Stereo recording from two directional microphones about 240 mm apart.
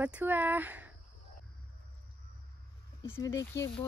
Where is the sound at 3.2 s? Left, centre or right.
Centre.